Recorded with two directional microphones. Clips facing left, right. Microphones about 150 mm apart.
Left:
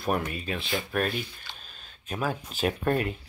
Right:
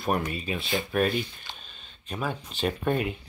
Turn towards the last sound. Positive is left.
turn(degrees=0)  # may be behind; listen again after turning